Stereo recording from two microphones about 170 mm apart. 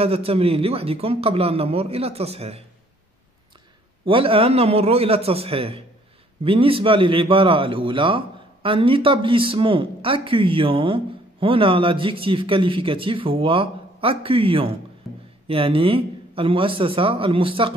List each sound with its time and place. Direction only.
0.0 s speech: 35° right (ahead or behind)
4.0 s speech: 30° right (ahead or behind)